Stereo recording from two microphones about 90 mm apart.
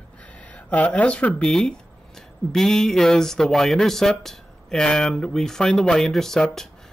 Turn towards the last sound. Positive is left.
turn(degrees=5)  # may be behind; listen again after turning